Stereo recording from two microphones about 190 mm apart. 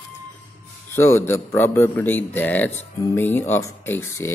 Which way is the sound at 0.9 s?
15° left (ahead or behind).